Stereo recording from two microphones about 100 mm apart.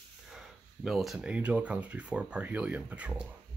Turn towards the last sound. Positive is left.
turn(degrees=-15)  # may be behind; listen again after turning